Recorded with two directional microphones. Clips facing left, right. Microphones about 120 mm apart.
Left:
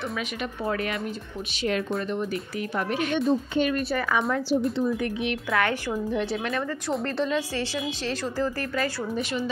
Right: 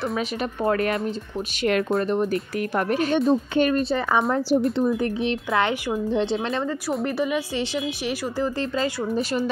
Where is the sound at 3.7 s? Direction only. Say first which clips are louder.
Right 4 dB; 25° right (ahead or behind).